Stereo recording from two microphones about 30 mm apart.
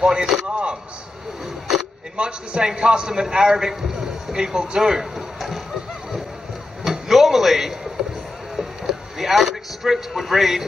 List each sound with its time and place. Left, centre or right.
0.0 s chop: right
0.5 s a man's voice: right
1.4 s a sound: centre
2.1 s a man's voice: right
6.8 s a sound: centre
8.0 s music: centre
8.9 s vehicle: centre
9.2 s a man's voice: centre
10.1 s a man's voice: centre